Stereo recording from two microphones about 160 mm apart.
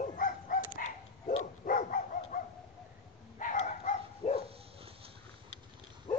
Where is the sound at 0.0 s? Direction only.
55° left (ahead or behind).